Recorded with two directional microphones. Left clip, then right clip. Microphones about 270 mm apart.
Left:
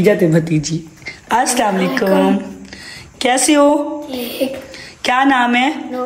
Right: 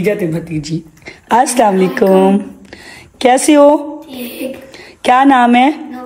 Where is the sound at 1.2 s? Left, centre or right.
Centre.